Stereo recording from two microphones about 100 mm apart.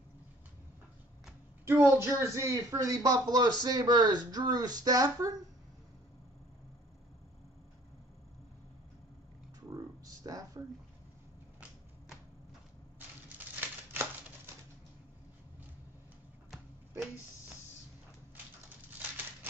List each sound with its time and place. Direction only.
1.7 s speech: 25° right (ahead or behind)
9.7 s a sound: 35° right (ahead or behind)
13.4 s crumpling: 20° right (ahead or behind)